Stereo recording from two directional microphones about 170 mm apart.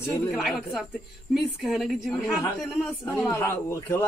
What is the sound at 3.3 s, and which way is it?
Speech, 15° left (ahead or behind).